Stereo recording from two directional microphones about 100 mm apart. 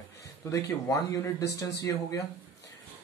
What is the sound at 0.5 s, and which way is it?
Speech, 30° left (ahead or behind).